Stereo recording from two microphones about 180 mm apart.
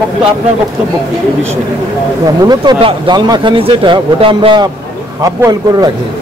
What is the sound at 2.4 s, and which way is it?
Speech, 25° right (ahead or behind).